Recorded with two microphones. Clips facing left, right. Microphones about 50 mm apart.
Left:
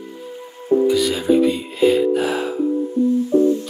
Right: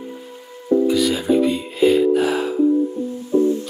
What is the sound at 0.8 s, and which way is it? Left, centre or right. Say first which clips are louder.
Speech: left 1 dB; centre.